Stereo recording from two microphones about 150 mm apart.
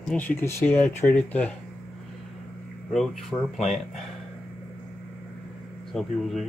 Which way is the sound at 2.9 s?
Centre (ahead or behind).